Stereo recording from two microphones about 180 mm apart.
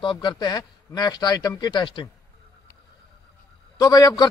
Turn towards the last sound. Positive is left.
turn(degrees=20)  # may be behind; listen again after turning